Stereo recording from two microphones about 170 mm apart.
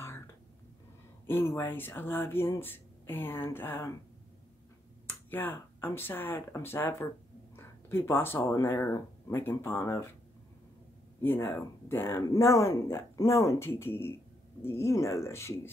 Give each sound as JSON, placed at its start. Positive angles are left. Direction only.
{"t": 1.2, "sound": "speech", "side_deg": 15}
{"t": 5.0, "sound": "speech", "side_deg": 10}
{"t": 11.2, "sound": "speech", "side_deg": 15}